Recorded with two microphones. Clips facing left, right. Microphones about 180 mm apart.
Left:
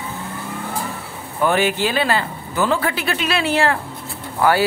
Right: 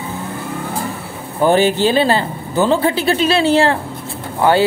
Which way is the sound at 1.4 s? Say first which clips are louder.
Right 5 dB; 30° right (ahead or behind).